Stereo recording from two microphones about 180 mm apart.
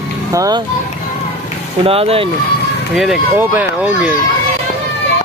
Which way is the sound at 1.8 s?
30° right (ahead or behind).